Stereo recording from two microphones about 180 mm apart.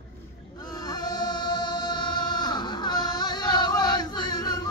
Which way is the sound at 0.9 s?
20° left (ahead or behind).